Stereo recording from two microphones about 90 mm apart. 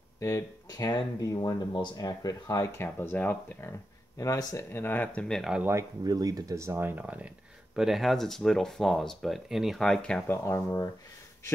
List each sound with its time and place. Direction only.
0.7 s speech: 45° left (ahead or behind)
2.8 s speech: 25° left (ahead or behind)
4.2 s speech: 40° left (ahead or behind)
4.7 s speech: 20° left (ahead or behind)
5.6 s speech: 30° right (ahead or behind)
6.0 s speech: 45° right (ahead or behind); by 7.2 s 15° right (ahead or behind)
7.7 s speech: 5° right (ahead or behind)
10.2 s speech: 25° left (ahead or behind)